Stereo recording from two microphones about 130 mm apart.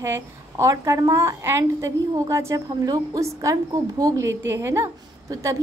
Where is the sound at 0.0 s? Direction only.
20° right (ahead or behind).